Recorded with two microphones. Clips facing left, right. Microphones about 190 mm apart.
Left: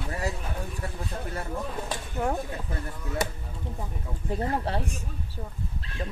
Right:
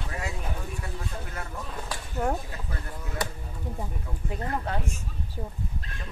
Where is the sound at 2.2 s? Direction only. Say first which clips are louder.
Even; 5° right (ahead or behind).